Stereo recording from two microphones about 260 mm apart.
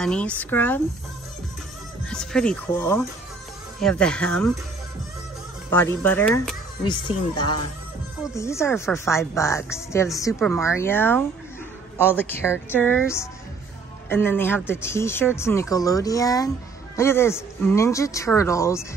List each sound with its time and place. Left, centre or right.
0.0 s speech: centre
2.0 s speech: centre
5.7 s speech: centre
6.8 s speech: centre